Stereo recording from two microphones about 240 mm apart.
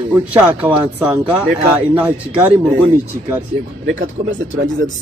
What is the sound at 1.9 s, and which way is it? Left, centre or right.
Speech, centre.